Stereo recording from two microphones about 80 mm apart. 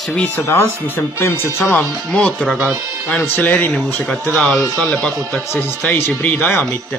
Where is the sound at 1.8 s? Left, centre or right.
Centre.